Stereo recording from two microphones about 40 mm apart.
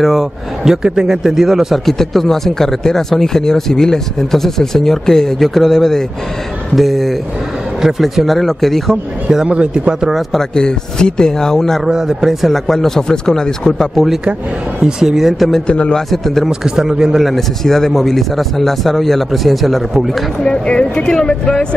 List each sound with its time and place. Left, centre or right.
0.0 s a man's voice: centre
1.9 s speech: centre
5.4 s speech: centre
9.3 s a man's voice: centre
10.5 s speech: centre
11.8 s a man's voice: centre
12.4 s speech: centre
13.7 s speech: centre
14.9 s a man's voice: centre
15.6 s speech: left
16.1 s speech: centre
16.4 s a man's voice: centre
17.6 s a man's voice: centre
20.4 s speech: left